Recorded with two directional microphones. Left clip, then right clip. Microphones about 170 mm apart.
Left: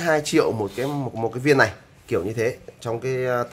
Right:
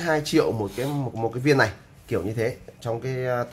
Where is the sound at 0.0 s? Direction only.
10° left (ahead or behind).